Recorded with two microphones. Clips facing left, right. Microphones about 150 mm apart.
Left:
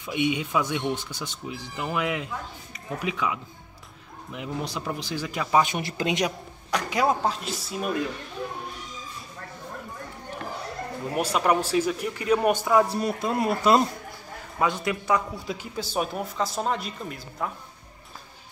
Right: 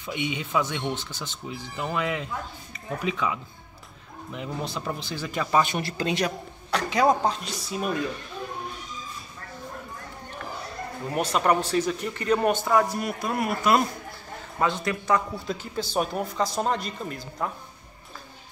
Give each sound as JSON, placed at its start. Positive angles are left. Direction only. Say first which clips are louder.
{"t": 0.0, "sound": "speech", "louder": "left 4 dB", "side_deg": 10}
{"t": 11.1, "sound": "speech", "louder": "even", "side_deg": 10}
{"t": 12.8, "sound": "a man's voice", "louder": "left 2 dB", "side_deg": 30}
{"t": 14.6, "sound": "speech", "louder": "even", "side_deg": 10}